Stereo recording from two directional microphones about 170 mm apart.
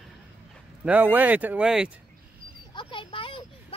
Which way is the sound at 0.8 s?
10° right (ahead or behind).